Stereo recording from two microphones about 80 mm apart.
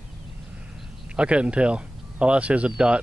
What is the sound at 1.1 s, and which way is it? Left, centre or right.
Speech, centre.